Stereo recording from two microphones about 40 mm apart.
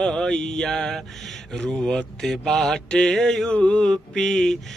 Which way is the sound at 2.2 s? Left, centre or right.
Centre.